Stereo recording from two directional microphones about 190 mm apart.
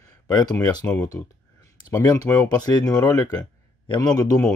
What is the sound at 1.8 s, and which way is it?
Speech, 15° left (ahead or behind).